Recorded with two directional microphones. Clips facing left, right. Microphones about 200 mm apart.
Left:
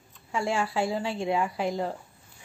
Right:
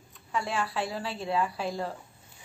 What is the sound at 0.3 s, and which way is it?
Speech, 25° left (ahead or behind).